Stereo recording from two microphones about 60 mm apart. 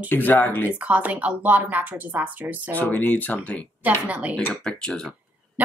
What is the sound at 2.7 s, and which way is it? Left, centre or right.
Speech, left.